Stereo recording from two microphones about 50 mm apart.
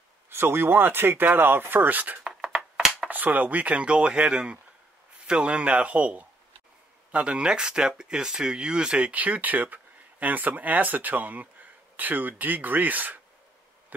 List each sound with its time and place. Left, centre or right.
0.3 s speech: right
2.2 s a sound: centre
3.1 s chopping: right
7.1 s speech: right
9.1 s speech: right